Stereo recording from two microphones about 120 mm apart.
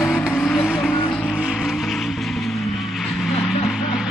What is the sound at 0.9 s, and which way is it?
Vehicle, 15° left (ahead or behind).